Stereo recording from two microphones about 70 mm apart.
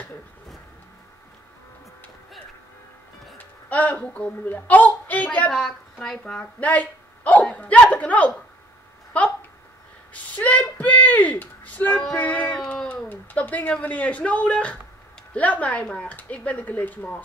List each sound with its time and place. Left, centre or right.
3.3 s a child's voice: left
5.5 s speech: centre
6.6 s speech: left
10.1 s a sound: left
12.2 s speech: left